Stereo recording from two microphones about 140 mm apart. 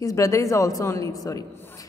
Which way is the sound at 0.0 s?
25° left (ahead or behind).